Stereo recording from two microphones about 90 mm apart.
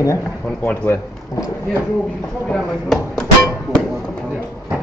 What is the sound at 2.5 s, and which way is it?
Speech, 5° left (ahead or behind).